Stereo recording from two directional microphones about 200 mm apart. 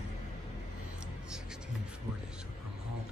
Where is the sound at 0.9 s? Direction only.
5° right (ahead or behind).